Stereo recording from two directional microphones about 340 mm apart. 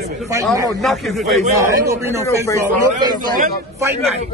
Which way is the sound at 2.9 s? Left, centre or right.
Right.